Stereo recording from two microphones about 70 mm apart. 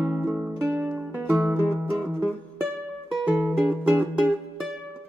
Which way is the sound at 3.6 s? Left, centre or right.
Right.